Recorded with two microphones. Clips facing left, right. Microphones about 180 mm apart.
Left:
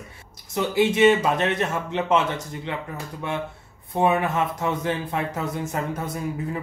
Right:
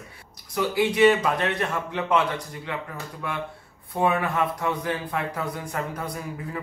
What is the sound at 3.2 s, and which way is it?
Speech, 25° left (ahead or behind).